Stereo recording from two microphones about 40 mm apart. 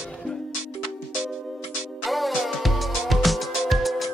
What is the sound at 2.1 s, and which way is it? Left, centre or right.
Music, centre.